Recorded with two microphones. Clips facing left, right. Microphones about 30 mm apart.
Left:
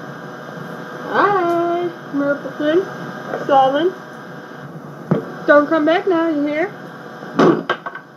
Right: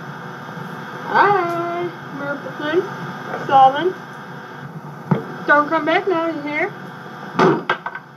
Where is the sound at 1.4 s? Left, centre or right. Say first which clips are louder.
Left 5 dB; centre.